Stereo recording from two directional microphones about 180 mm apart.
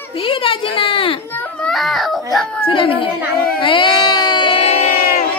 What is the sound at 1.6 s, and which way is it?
Speech, centre (ahead or behind).